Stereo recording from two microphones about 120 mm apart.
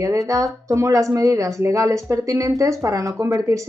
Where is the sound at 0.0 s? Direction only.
25° right (ahead or behind).